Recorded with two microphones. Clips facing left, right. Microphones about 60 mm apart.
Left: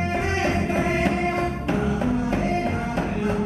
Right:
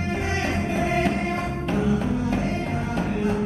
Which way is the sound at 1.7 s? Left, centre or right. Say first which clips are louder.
Right 3 dB; left.